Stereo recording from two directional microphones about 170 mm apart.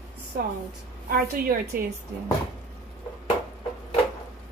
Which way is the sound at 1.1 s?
60° right (ahead or behind).